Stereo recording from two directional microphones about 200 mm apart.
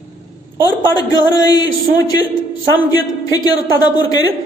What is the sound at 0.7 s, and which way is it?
A man's voice, 20° left (ahead or behind).